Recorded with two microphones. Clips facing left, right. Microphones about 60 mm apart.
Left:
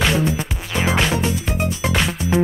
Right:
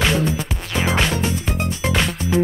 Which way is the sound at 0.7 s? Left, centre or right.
Centre.